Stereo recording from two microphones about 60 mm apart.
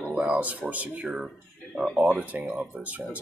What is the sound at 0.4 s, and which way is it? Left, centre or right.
Speech, right.